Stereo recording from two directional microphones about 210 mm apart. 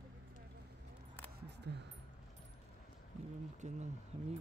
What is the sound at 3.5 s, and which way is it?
Speech, 35° right (ahead or behind).